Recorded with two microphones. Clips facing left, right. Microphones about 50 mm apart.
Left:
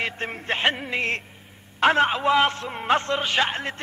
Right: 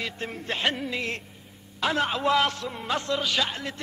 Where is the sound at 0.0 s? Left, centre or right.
Left.